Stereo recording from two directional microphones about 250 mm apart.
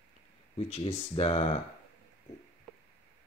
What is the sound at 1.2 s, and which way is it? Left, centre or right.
Speech, left.